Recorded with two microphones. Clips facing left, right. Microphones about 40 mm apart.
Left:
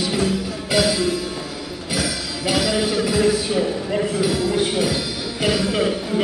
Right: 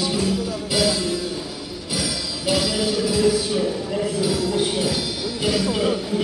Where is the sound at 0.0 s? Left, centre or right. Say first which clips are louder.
Left 1 dB; left.